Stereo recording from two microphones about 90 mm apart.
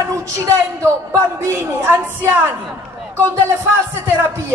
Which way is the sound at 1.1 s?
30° right (ahead or behind).